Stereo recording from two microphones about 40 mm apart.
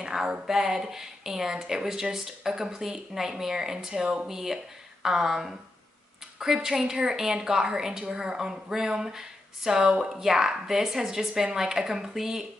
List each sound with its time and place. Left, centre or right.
0.0 s speech: centre